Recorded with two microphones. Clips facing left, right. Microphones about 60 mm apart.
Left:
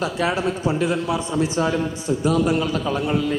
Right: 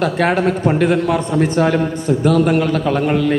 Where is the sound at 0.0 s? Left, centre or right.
Right.